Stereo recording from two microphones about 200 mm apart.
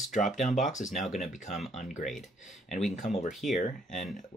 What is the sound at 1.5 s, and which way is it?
Speech, centre (ahead or behind).